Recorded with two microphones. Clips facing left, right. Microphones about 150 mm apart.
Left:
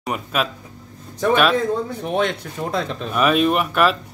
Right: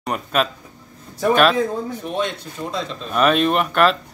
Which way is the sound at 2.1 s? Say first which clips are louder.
Left 4 dB; 65° left (ahead or behind).